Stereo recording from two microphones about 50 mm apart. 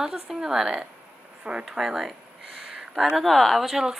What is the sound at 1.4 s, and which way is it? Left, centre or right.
Speech, right.